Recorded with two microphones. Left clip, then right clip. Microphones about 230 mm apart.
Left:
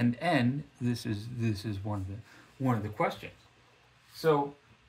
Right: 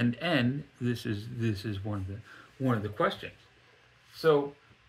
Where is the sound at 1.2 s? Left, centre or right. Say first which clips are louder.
Right 1 dB; right.